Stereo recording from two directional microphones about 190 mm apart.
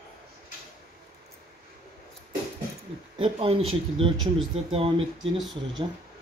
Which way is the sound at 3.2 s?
30° right (ahead or behind).